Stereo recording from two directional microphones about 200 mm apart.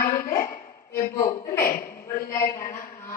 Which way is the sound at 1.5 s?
45° left (ahead or behind).